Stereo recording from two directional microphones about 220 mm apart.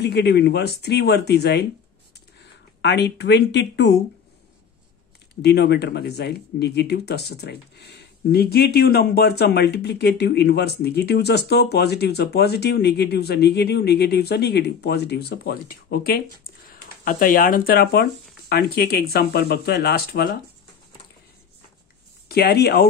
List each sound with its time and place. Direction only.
0.0 s speech: 50° left (ahead or behind)
2.8 s speech: 50° left (ahead or behind)
5.4 s speech: 50° left (ahead or behind)
22.3 s speech: 45° left (ahead or behind)